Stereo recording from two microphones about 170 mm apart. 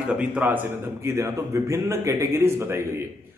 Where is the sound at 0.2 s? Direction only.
10° right (ahead or behind).